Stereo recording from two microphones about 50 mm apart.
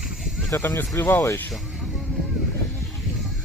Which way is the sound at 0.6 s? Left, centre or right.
Left.